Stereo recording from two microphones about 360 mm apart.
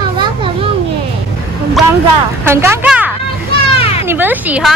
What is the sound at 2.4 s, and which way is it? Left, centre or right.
A child's voice, centre.